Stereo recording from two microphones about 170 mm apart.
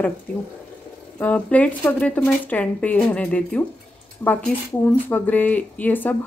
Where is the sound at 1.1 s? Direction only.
10° left (ahead or behind).